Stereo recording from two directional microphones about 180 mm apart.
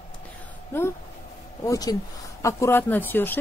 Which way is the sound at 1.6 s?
20° left (ahead or behind).